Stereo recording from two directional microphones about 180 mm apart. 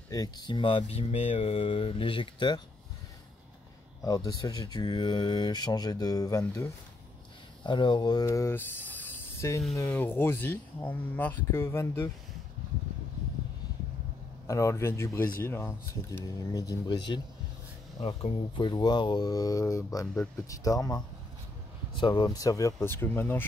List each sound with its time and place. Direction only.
0.1 s speech: 20° left (ahead or behind)
4.0 s speech: 20° left (ahead or behind)
14.5 s speech: 15° left (ahead or behind)
18.0 s speech: 30° left (ahead or behind); by 23.4 s 10° left (ahead or behind)